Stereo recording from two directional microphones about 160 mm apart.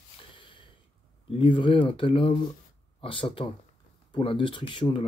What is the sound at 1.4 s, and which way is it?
Speech, 30° left (ahead or behind).